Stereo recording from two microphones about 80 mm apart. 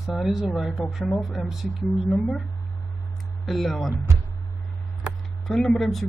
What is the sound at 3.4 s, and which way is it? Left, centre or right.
Speech, centre.